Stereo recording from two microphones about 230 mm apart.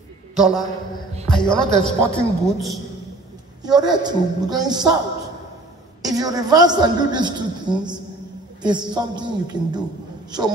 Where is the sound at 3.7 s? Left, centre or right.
Centre.